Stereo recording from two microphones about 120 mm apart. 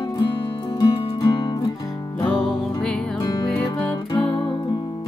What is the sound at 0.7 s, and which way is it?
Music, 40° left (ahead or behind).